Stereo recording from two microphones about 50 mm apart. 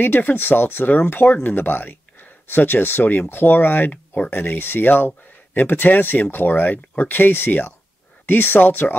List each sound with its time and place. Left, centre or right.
0.0 s speech: left